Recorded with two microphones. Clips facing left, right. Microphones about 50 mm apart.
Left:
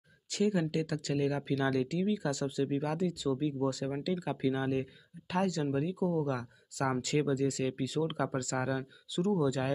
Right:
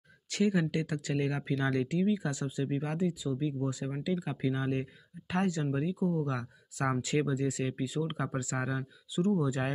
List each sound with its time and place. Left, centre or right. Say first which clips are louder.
0.3 s speech: right 1 dB; right; by 4.4 s centre
4.4 s speech: left 1 dB; right
5.3 s speech: even; right
5.9 s speech: even; left
6.2 s speech: left 1 dB; right